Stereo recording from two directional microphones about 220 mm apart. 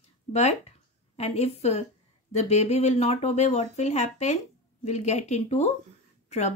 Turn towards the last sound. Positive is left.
turn(degrees=30)  # may be behind; listen again after turning